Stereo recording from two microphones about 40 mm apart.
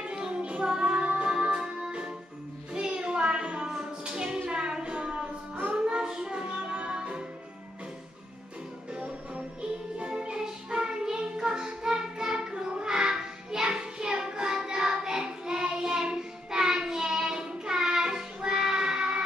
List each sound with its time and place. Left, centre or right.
0.0 s music: right
2.7 s child singing: right
3.7 s music: centre
8.9 s music: right
16.1 s child singing: centre